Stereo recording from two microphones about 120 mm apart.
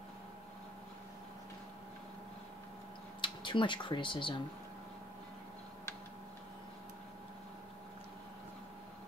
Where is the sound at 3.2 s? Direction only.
40° left (ahead or behind).